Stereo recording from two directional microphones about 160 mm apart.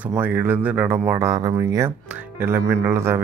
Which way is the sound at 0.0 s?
10° right (ahead or behind).